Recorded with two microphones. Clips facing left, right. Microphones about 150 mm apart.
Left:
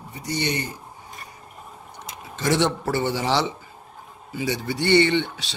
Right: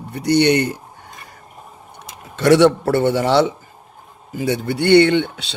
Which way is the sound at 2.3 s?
65° right (ahead or behind).